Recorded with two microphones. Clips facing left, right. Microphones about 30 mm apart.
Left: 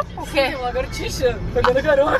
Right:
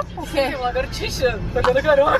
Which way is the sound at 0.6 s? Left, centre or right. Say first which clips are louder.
Right 1 dB; centre.